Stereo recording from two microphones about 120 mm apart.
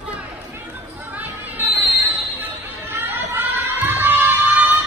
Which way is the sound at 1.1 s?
15° right (ahead or behind).